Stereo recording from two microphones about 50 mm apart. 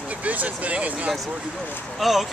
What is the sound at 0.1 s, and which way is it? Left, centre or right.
Speech, right.